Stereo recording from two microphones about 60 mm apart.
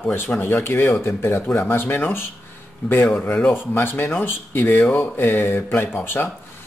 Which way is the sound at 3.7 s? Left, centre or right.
Left.